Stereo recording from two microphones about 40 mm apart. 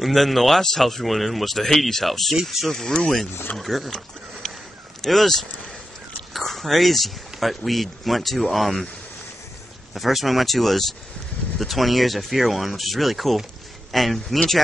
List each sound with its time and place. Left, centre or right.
0.0 s speech: centre
2.7 s speech: centre
3.5 s speech: centre
5.0 s speech: centre
9.9 s speech: centre